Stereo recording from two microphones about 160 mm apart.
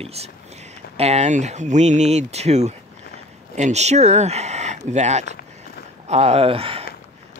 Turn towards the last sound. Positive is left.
turn(degrees=-35)  # may be behind; listen again after turning